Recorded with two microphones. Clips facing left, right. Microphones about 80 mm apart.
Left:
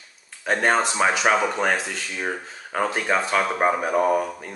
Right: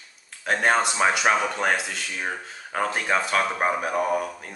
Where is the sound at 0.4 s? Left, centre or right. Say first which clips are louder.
Left 1 dB; centre.